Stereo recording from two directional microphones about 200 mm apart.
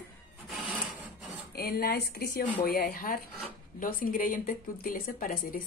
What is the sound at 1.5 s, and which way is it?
Speech, 50° left (ahead or behind).